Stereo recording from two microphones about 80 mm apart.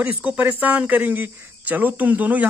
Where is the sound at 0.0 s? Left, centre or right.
Centre.